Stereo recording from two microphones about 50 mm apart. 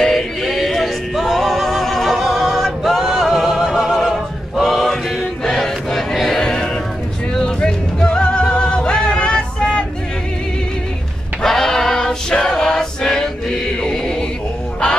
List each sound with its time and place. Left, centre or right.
0.0 s music: centre
4.6 s male singing: centre
5.4 s choir: centre
7.3 s music: centre
11.4 s choir: centre